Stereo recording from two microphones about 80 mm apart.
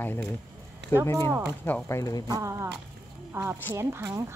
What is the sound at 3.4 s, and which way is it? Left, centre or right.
Speech, right.